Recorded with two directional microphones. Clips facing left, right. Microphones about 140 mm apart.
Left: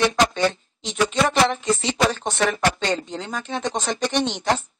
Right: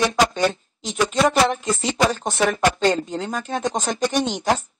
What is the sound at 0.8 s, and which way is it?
Speech, 45° right (ahead or behind).